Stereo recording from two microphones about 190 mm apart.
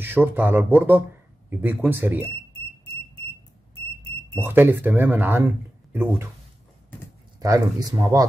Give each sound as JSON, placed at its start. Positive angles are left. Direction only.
{"t": 0.0, "sound": "speech", "side_deg": -10}
{"t": 4.3, "sound": "speech", "side_deg": -10}
{"t": 7.3, "sound": "speech", "side_deg": -20}